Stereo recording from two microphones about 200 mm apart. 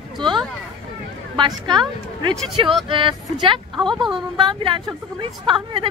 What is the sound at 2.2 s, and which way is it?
Speech, 25° right (ahead or behind).